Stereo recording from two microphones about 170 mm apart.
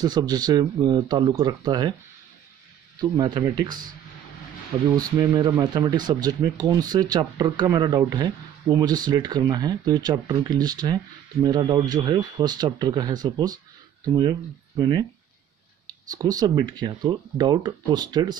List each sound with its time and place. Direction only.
0.0 s speech: 25° right (ahead or behind)
3.0 s speech: 25° right (ahead or behind)
4.9 s speech: 20° right (ahead or behind)